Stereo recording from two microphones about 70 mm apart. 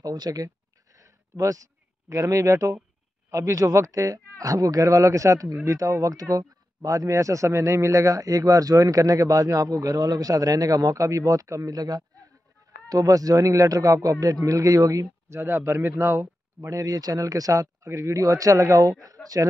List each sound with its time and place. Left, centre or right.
0.0 s speech: right
0.9 s a sound: right
3.3 s speech: right